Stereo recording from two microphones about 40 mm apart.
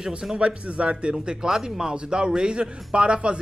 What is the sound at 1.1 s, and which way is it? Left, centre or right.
Speech, centre.